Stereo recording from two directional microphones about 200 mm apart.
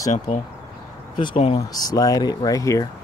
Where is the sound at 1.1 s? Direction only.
25° left (ahead or behind).